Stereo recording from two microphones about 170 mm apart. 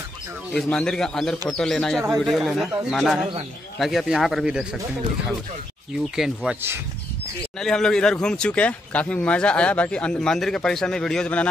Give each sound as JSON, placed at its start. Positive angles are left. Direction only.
{"t": 0.5, "sound": "speech", "side_deg": 5}
{"t": 6.1, "sound": "speech", "side_deg": -5}
{"t": 7.5, "sound": "speech", "side_deg": 5}